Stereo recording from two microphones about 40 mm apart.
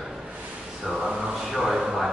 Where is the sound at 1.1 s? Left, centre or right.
Centre.